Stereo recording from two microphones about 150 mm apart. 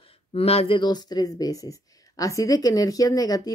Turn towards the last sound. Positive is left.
turn(degrees=25)  # may be behind; listen again after turning